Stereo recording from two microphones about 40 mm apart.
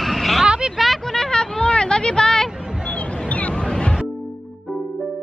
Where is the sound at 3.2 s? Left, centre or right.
Left.